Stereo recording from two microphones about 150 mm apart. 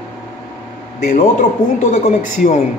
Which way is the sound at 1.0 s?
60° left (ahead or behind).